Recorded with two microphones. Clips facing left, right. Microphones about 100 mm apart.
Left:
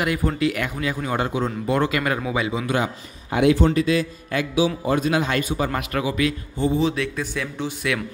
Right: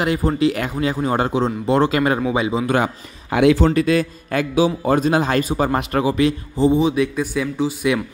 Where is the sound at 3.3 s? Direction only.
90° right.